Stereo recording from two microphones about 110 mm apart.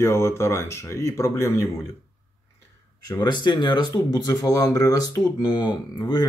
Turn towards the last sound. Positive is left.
turn(degrees=40)  # may be behind; listen again after turning